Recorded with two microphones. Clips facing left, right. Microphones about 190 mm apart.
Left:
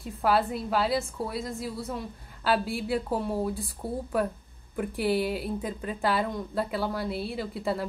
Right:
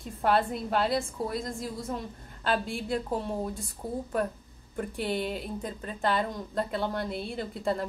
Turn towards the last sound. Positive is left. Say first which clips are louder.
# even
turn(degrees=5)  # may be behind; listen again after turning